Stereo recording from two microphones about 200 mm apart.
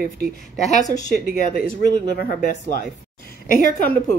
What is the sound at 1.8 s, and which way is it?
Speech, 45° left (ahead or behind).